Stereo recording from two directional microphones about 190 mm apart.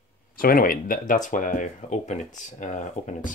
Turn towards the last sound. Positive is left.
turn(degrees=40)  # may be behind; listen again after turning